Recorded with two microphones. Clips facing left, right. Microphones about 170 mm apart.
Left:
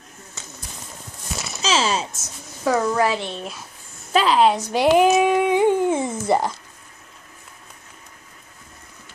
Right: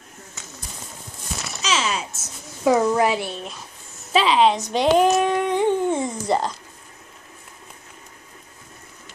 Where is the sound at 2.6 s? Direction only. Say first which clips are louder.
Right 2 dB; 15° right (ahead or behind).